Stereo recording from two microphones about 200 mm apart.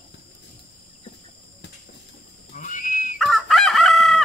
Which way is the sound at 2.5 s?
40° left (ahead or behind).